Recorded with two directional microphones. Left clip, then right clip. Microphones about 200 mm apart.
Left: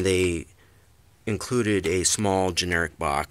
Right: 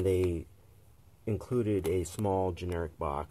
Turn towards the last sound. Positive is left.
turn(degrees=25)  # may be behind; listen again after turning